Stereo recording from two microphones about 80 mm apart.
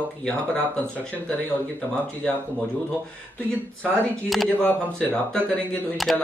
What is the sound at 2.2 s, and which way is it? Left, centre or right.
Speech, centre.